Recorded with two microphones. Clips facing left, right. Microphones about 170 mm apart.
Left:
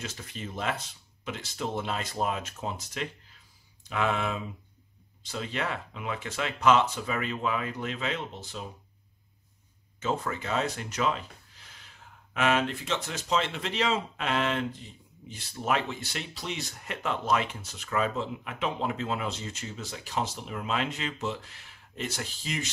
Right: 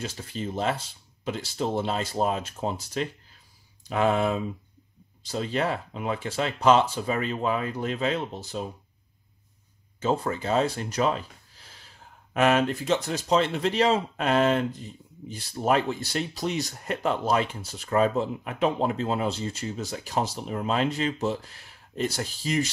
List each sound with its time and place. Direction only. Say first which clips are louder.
0.0 s speech: right 6 dB; 30° right (ahead or behind)
9.9 s speech: right 5 dB; 35° right (ahead or behind)
12.4 s speech: right 5 dB; 45° right (ahead or behind)